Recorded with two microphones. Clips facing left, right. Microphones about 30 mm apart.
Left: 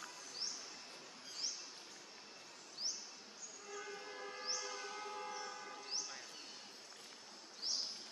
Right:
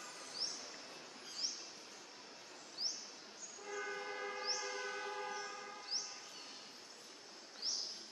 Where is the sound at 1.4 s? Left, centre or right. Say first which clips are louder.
Right 1 dB; right.